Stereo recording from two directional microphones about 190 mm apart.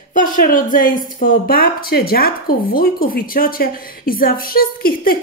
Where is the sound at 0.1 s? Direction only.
45° left (ahead or behind).